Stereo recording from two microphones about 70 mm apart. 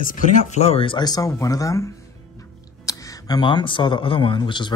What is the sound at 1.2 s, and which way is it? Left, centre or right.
Speech, left.